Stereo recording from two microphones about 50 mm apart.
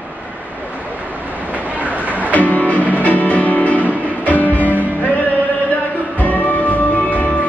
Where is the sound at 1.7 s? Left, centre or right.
Right.